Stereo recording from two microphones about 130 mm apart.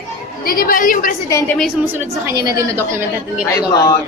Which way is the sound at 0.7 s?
90° left.